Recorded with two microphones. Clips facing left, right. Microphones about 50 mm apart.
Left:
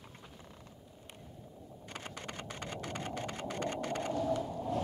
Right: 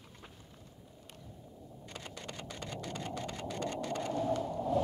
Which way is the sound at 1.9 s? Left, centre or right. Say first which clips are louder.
Left 2 dB; left.